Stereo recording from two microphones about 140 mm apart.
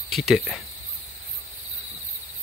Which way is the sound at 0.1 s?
Centre (ahead or behind).